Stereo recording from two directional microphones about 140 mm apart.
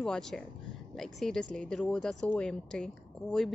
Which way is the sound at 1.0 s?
5° left (ahead or behind).